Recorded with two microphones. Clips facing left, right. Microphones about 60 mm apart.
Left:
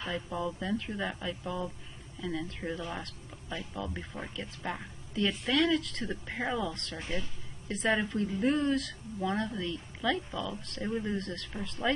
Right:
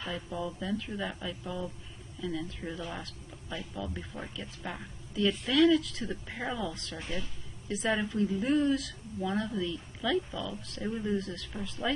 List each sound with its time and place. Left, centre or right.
0.3 s speech: centre
6.3 s speech: centre
6.7 s speech: centre